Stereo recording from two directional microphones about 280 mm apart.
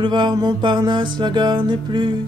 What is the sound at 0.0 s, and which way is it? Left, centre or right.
Music, centre.